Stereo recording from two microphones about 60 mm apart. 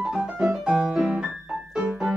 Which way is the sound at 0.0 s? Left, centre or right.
Centre.